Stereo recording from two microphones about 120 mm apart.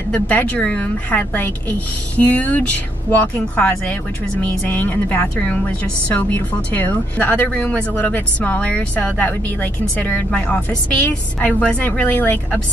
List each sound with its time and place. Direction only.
0.1 s a woman's voice: 10° left (ahead or behind)